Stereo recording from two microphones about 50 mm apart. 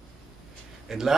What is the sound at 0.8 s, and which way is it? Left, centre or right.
Speech, centre.